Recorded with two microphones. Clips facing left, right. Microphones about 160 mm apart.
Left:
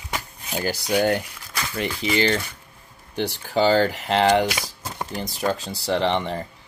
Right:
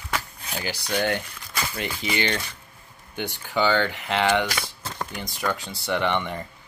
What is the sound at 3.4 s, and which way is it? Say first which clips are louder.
Speech: left 4 dB; 35° left (ahead or behind).